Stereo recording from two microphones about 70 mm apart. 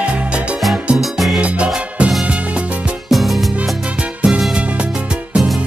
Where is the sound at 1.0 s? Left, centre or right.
Centre.